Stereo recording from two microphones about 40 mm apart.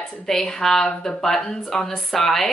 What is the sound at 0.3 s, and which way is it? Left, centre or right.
Speech, centre.